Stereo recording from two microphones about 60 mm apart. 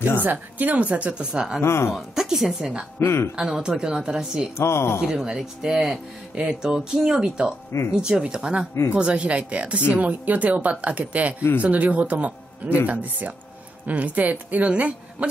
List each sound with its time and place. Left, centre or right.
0.2 s speech: right; by 1.6 s centre
1.6 s speech: left
2.0 s speech: centre
3.0 s speech: left
3.3 s speech: centre
4.6 s speech: left
5.0 s speech: centre